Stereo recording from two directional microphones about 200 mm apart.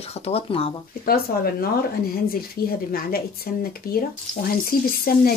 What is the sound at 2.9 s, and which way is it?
Speech, 50° left (ahead or behind).